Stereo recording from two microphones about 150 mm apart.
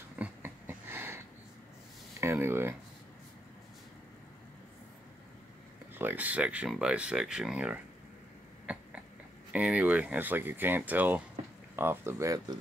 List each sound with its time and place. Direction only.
0.2 s a sound: 15° right (ahead or behind)
2.1 s speech: 15° right (ahead or behind)
5.9 s speech: 10° right (ahead or behind)
9.5 s speech: 10° right (ahead or behind)